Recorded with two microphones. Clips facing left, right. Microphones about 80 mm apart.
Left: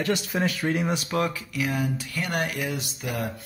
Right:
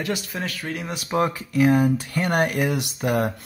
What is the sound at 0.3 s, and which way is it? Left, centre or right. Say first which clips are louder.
Speech: left 4 dB; centre.